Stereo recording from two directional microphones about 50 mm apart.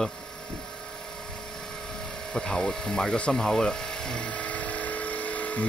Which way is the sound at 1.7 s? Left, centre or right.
Centre.